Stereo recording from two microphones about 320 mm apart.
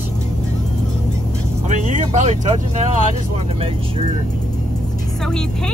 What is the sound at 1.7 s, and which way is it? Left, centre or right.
Vehicle, right.